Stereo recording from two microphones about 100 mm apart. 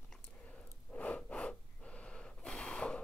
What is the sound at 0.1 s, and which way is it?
Gasp, 10° left (ahead or behind).